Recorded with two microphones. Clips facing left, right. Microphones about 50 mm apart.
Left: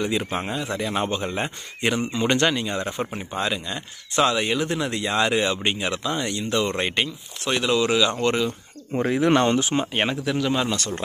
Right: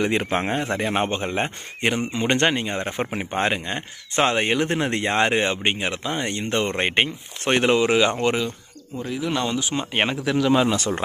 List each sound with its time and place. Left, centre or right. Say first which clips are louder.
0.3 s speech: right 4 dB; right
3.1 s speech: right 3 dB; right
7.7 s speech: left 1 dB; right
8.2 s speech: even; centre
8.9 s speech: left 6 dB; left
9.9 s speech: right 2 dB; centre